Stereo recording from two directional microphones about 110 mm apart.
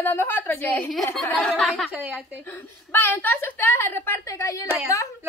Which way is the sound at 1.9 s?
15° right (ahead or behind).